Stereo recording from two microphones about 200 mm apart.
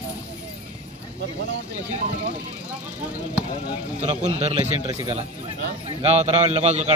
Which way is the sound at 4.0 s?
35° right (ahead or behind).